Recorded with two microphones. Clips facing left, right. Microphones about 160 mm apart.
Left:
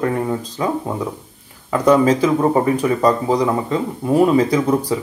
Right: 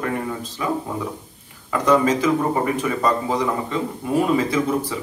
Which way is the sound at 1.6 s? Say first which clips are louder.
Left 4 dB; 35° left (ahead or behind).